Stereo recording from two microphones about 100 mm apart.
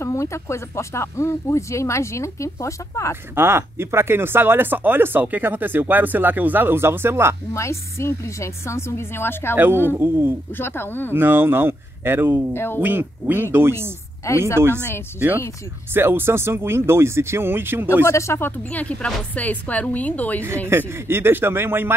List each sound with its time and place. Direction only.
0.0 s speech: 30° left (ahead or behind)
3.3 s speech: 25° right (ahead or behind)
7.5 s speech: 30° left (ahead or behind)
9.8 s speech: 20° right (ahead or behind)
10.5 s speech: 20° left (ahead or behind)
11.1 s speech: 20° right (ahead or behind)
12.5 s speech: 20° left (ahead or behind)
12.8 s speech: 20° right (ahead or behind)
14.2 s speech: 30° left (ahead or behind)
15.1 s speech: 20° right (ahead or behind)
18.0 s speech: 30° left (ahead or behind)
18.6 s speech: 15° left (ahead or behind)
20.4 s speech: 25° right (ahead or behind)